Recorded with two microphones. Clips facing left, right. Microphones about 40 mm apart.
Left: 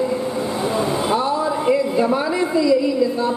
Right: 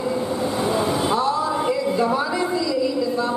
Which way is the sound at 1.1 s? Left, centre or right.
Centre.